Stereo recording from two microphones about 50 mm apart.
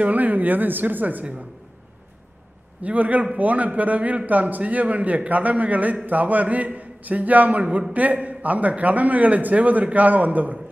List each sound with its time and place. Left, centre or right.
0.0 s a man's voice: right
2.8 s a man's voice: right